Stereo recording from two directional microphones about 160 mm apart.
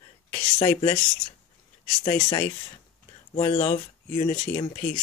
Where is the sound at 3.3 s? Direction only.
40° left (ahead or behind).